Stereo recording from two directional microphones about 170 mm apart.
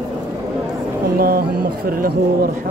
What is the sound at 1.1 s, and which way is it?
Speech, 60° right (ahead or behind).